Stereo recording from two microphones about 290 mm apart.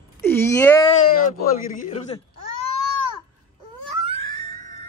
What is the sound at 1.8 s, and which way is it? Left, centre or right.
Speech, left.